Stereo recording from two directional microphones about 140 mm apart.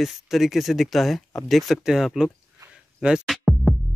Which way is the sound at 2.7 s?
5° right (ahead or behind).